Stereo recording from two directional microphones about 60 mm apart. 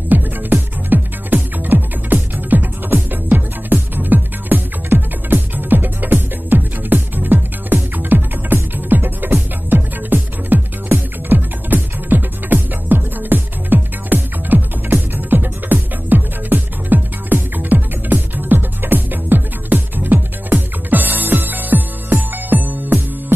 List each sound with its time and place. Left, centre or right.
0.1 s music: right